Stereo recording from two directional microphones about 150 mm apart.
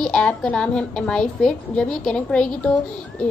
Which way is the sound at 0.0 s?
5° left (ahead or behind).